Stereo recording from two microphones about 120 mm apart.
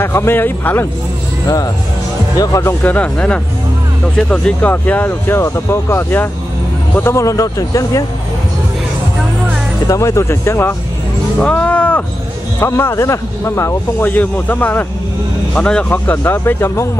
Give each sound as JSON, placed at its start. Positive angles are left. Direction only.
{"t": 0.0, "sound": "speech", "side_deg": 20}
{"t": 2.3, "sound": "speech", "side_deg": 30}
{"t": 2.8, "sound": "speech", "side_deg": 15}
{"t": 9.8, "sound": "speech", "side_deg": 25}